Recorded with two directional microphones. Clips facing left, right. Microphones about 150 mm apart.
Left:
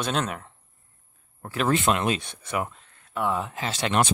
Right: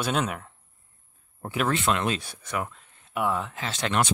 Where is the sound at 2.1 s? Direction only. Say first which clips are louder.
Left 2 dB; centre (ahead or behind).